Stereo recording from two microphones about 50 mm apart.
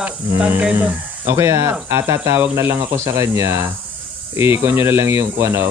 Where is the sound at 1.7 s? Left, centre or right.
Right.